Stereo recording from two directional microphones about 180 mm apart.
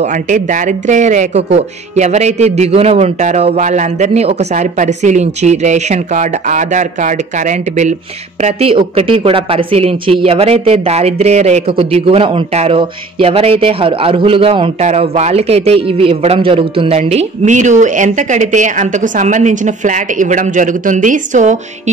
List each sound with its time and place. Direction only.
0.0 s a man's voice: 45° right (ahead or behind)